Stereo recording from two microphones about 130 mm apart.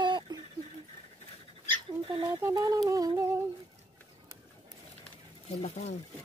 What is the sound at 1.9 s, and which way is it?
Bird, 45° right (ahead or behind).